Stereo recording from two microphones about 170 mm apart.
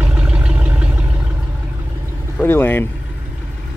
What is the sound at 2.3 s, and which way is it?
Vehicle, 10° left (ahead or behind).